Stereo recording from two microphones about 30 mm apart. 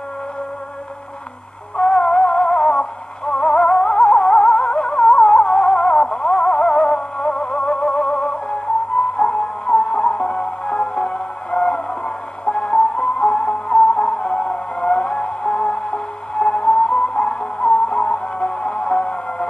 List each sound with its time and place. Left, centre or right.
1.8 s music: left